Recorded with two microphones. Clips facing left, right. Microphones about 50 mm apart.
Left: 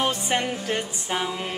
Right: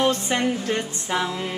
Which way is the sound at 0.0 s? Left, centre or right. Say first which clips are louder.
Right 3 dB; centre.